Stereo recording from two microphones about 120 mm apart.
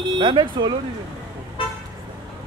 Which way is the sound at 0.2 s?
40° right (ahead or behind).